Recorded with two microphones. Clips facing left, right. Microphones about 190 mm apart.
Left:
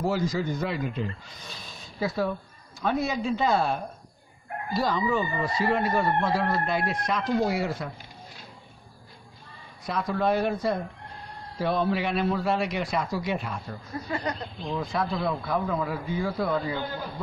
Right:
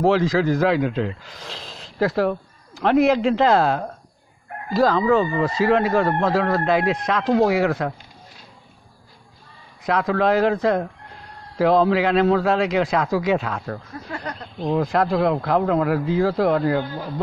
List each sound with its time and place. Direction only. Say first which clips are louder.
0.0 s speech: right 9 dB; 90° right
9.8 s speech: right 6 dB; 90° right
13.9 s speech: left 1 dB; 10° left (ahead or behind)
14.8 s speech: right 9 dB; 90° right